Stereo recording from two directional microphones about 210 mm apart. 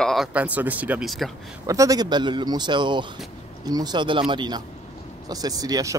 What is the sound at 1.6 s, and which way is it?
A man's voice, 15° right (ahead or behind).